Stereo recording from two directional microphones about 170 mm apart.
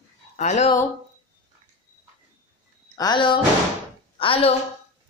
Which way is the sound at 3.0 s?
25° left (ahead or behind).